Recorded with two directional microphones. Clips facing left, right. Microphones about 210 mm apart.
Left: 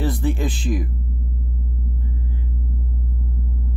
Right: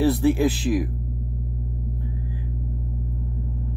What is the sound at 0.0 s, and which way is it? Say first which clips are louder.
Speech: right 5 dB; 10° right (ahead or behind).